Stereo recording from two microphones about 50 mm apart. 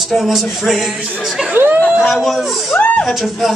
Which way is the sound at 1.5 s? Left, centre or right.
Right.